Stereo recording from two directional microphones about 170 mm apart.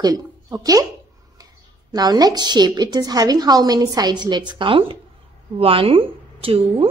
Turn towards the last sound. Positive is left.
turn(degrees=-35)  # may be behind; listen again after turning